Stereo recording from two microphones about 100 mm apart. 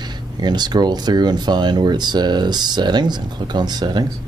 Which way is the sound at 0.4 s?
45° right (ahead or behind).